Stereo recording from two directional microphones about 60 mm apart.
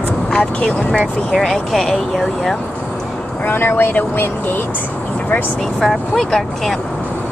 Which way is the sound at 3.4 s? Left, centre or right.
Left.